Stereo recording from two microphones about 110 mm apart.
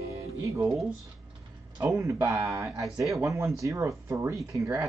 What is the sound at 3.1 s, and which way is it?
Speech, 30° right (ahead or behind).